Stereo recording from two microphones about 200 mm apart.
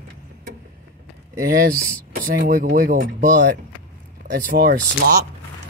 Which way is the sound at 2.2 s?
45° right (ahead or behind).